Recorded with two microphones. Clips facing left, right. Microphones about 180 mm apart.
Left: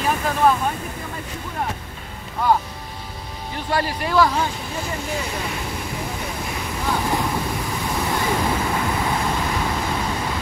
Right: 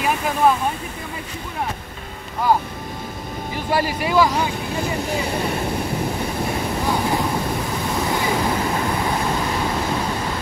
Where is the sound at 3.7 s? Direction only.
10° right (ahead or behind).